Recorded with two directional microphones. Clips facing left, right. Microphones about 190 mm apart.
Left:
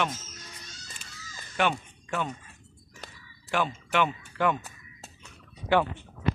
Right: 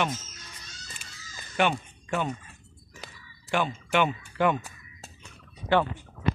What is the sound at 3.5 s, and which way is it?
Speech, centre (ahead or behind).